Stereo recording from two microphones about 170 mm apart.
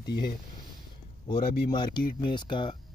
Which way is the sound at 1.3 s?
25° left (ahead or behind).